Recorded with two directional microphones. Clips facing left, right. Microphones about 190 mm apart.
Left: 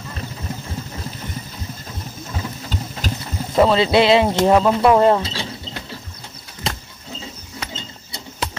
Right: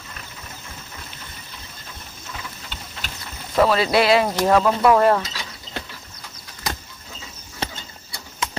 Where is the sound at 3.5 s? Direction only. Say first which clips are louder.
Left 3 dB; 25° left (ahead or behind).